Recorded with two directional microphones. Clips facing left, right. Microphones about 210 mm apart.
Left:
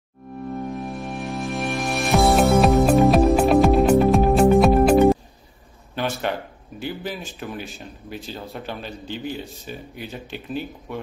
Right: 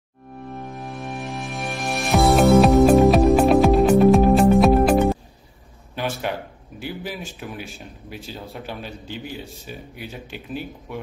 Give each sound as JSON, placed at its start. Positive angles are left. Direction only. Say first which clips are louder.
{"t": 0.6, "sound": "music", "louder": "left 4 dB", "side_deg": 0}
{"t": 5.9, "sound": "speech", "louder": "left 1 dB", "side_deg": -10}